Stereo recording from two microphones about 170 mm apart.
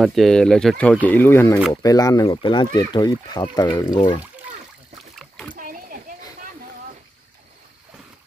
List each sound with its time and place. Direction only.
0.0 s speech: centre (ahead or behind); by 2.2 s 20° left (ahead or behind)
2.2 s speech: 30° left (ahead or behind)
5.1 s splash: centre (ahead or behind)
5.6 s a sound: 55° right (ahead or behind)